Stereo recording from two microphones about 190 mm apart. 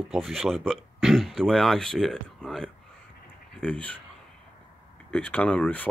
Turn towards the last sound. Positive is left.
turn(degrees=10)  # may be behind; listen again after turning